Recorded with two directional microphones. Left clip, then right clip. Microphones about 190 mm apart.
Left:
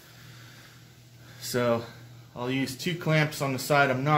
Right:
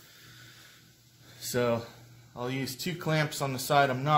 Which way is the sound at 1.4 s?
35° right (ahead or behind).